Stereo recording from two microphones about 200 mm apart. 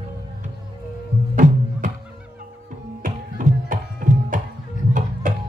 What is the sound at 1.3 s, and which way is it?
Music, 40° right (ahead or behind).